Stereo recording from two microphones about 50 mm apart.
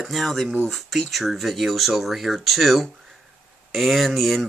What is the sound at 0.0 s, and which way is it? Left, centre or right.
Speech, centre.